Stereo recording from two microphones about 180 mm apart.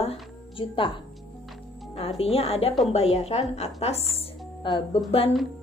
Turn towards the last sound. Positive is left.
turn(degrees=30)  # may be behind; listen again after turning